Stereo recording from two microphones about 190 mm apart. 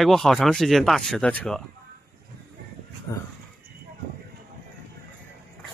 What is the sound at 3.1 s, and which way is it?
Speech, 20° left (ahead or behind).